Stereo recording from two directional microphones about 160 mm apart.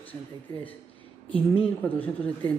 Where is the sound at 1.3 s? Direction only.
35° left (ahead or behind).